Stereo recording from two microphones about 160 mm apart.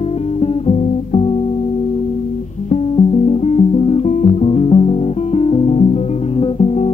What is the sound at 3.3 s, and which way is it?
Music, 35° left (ahead or behind).